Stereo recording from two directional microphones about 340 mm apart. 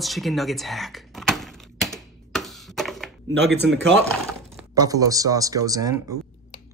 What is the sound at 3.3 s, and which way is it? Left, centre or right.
Speech, right.